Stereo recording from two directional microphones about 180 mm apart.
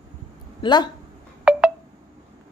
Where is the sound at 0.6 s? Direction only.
25° left (ahead or behind).